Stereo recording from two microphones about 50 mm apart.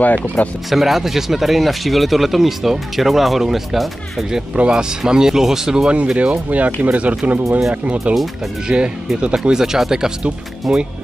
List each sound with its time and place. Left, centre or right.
0.0 s speech: left
0.7 s speech: centre
4.6 s speech: centre
5.9 s speech: right
8.6 s speech: centre